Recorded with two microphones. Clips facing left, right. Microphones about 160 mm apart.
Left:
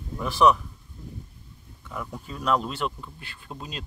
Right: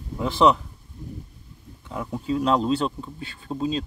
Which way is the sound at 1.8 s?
30° right (ahead or behind).